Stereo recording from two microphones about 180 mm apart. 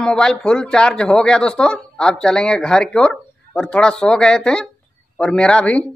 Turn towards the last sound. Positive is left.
turn(degrees=5)  # may be behind; listen again after turning